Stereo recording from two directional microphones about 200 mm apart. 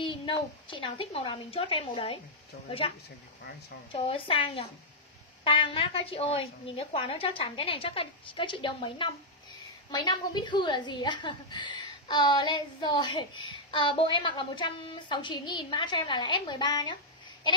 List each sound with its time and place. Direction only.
0.0 s a woman's voice: 25° left (ahead or behind)